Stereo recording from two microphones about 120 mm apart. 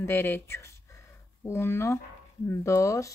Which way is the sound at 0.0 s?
20° left (ahead or behind).